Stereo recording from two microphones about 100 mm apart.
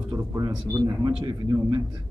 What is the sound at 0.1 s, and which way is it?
A man's voice, 35° right (ahead or behind).